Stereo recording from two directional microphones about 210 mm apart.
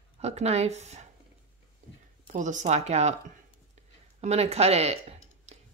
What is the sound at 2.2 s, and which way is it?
Speech, 35° right (ahead or behind).